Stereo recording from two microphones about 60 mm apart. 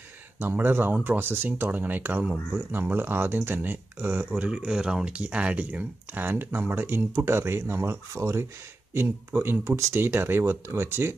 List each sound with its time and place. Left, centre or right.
0.4 s speech: right
4.3 s speech: centre; by 7.0 s right
7.1 s speech: right